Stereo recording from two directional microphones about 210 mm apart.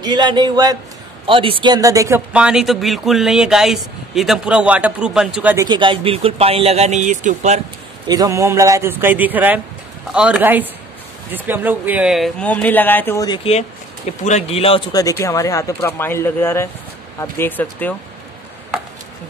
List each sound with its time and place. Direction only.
0.0 s speech: 20° right (ahead or behind)
5.7 s speech: 25° right (ahead or behind)
8.1 s a man's voice: 15° right (ahead or behind); by 17.9 s 10° left (ahead or behind)